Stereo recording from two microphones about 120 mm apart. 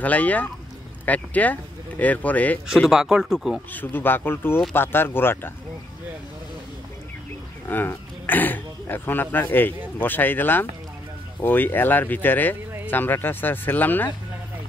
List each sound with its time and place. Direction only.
0.0 s speech: 15° left (ahead or behind)
2.7 s speech: 5° right (ahead or behind)
3.7 s speech: 15° left (ahead or behind)
7.6 s speech: 15° left (ahead or behind)